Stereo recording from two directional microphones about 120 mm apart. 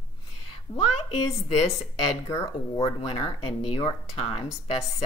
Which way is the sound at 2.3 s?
25° left (ahead or behind).